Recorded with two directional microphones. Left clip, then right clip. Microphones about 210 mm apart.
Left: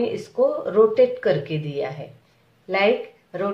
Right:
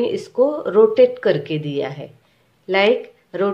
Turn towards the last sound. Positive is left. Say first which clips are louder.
# right 5 dB
turn(degrees=-40)  # may be behind; listen again after turning